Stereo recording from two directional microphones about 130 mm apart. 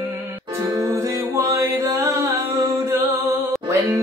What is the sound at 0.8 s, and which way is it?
Music, 25° right (ahead or behind).